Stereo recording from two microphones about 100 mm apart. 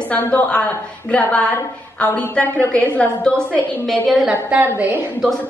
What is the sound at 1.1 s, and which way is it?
A woman's voice, 15° left (ahead or behind).